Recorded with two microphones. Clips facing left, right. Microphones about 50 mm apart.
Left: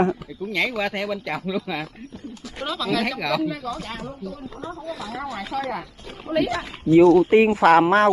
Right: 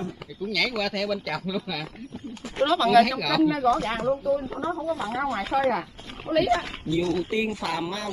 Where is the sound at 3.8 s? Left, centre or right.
Right.